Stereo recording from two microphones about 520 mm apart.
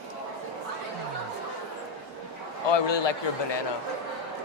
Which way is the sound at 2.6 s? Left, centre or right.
Left.